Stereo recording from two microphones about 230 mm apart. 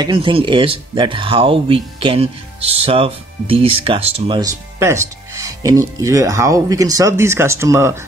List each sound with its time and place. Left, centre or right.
0.0 s speech: right